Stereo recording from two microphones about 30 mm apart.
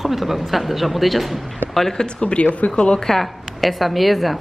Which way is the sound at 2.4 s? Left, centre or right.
Left.